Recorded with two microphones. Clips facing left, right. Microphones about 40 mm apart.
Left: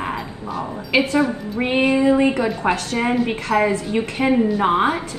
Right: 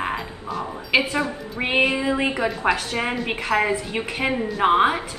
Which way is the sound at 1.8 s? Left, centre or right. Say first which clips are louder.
Left 5 dB; centre.